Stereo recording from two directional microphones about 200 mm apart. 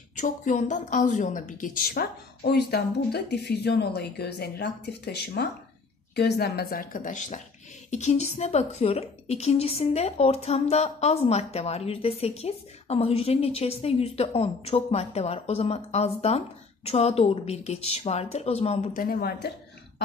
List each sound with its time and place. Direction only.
0.1 s a woman's voice: 40° left (ahead or behind)
19.0 s a woman's voice: 50° left (ahead or behind)